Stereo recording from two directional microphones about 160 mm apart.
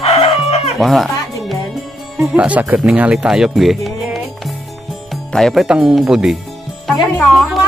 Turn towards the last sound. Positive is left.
turn(degrees=0)  # may be behind; listen again after turning